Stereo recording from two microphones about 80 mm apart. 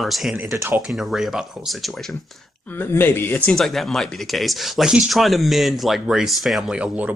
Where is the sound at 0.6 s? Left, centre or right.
Right.